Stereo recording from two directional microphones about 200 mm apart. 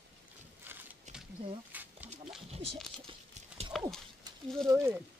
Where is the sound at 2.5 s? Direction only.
30° right (ahead or behind).